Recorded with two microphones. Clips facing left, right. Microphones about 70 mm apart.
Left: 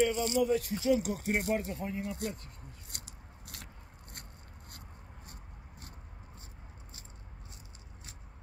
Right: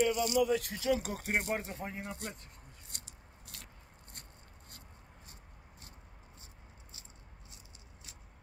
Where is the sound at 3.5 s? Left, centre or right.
Left.